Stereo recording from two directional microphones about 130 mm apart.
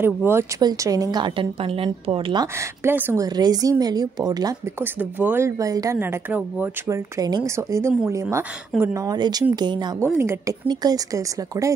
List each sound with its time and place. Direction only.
0.0 s speech: 20° right (ahead or behind)
0.6 s a woman's voice: 30° right (ahead or behind)
2.8 s speech: 20° right (ahead or behind)
3.3 s a woman's voice: 30° right (ahead or behind)
5.2 s speech: 20° right (ahead or behind)
5.9 s speech: 15° right (ahead or behind)
7.2 s a woman's voice: 30° right (ahead or behind)
9.9 s speech: 20° right (ahead or behind)
10.7 s speech: 30° right (ahead or behind)